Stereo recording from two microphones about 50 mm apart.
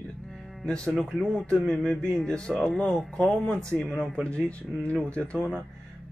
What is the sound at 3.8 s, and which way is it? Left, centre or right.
Speech, centre.